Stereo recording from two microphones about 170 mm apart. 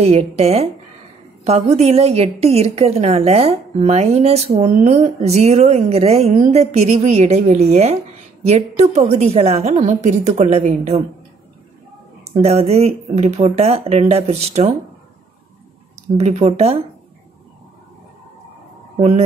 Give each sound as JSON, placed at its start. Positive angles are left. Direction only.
{"t": 0.0, "sound": "a woman's voice", "side_deg": -35}
{"t": 12.4, "sound": "a woman's voice", "side_deg": -35}
{"t": 16.2, "sound": "a woman's voice", "side_deg": -40}
{"t": 18.9, "sound": "a woman's voice", "side_deg": -35}